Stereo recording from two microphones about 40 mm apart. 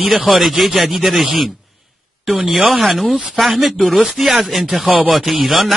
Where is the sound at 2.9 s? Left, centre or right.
Centre.